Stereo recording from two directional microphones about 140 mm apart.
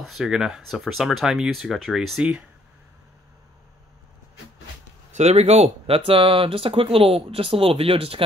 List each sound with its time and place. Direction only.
0.0 s speech: centre (ahead or behind)
5.1 s speech: 50° right (ahead or behind)